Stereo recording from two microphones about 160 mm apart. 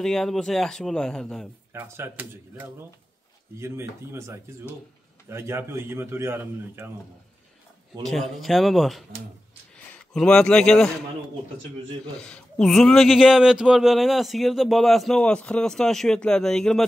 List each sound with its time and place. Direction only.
0.0 s a man's voice: centre (ahead or behind)
1.7 s speech: 15° right (ahead or behind)
8.0 s a man's voice: centre (ahead or behind)
10.1 s a man's voice: 5° left (ahead or behind)
12.2 s a man's voice: 5° left (ahead or behind)